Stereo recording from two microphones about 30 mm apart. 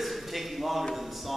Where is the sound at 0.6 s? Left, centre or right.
Centre.